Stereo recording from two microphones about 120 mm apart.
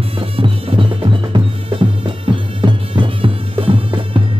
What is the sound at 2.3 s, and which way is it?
Bagpipes, 45° right (ahead or behind).